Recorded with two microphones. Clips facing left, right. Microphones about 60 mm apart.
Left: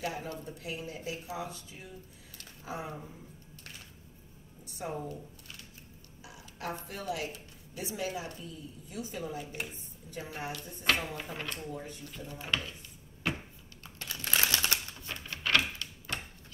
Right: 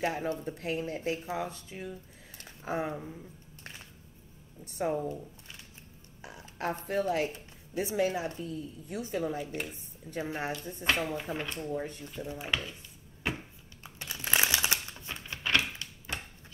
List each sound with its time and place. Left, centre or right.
0.0 s speech: right
2.9 s speech: centre
4.8 s a woman's voice: right
6.2 s a woman's voice: right
8.5 s a woman's voice: right
9.5 s speech: centre
10.1 s speech: right
11.7 s speech: right
12.1 s speech: centre
13.9 s typewriter: centre